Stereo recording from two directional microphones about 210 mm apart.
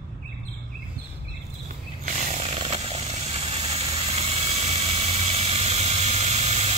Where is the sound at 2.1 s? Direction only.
30° right (ahead or behind).